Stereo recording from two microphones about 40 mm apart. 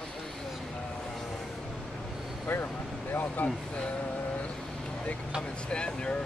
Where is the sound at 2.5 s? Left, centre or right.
Left.